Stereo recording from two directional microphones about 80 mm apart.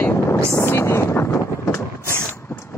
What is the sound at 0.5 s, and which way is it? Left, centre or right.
Speech, left.